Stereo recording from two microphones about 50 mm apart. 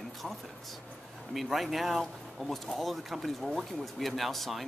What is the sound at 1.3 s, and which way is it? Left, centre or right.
Speech, centre.